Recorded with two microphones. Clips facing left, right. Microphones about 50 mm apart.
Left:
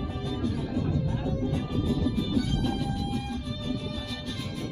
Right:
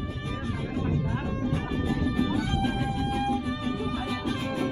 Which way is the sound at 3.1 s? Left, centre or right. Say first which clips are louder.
Right 6 dB; right.